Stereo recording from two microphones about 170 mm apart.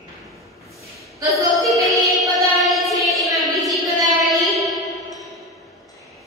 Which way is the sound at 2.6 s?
Centre (ahead or behind).